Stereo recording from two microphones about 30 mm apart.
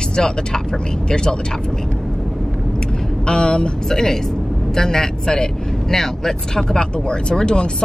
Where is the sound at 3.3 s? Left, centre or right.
Left.